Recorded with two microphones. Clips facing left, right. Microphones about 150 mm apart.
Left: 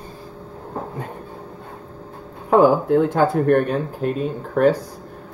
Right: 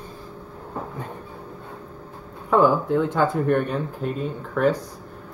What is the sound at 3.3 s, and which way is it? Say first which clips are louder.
Speech: left 4 dB; 65° left (ahead or behind).